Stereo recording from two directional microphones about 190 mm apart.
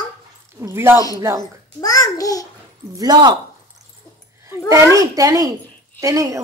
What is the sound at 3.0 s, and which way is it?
Speech, 20° right (ahead or behind).